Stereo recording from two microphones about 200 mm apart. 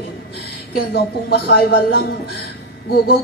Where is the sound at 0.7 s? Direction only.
50° left (ahead or behind).